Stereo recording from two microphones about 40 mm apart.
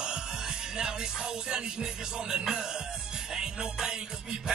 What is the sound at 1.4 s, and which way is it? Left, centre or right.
Music, centre.